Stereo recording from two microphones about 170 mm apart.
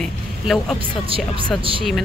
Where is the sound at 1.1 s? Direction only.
30° right (ahead or behind).